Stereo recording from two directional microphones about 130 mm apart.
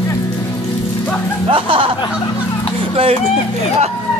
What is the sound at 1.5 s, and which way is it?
Speech, 40° right (ahead or behind).